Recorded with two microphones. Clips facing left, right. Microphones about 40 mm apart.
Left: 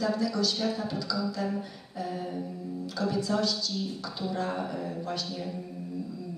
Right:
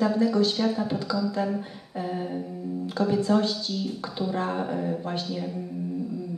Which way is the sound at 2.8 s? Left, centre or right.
Right.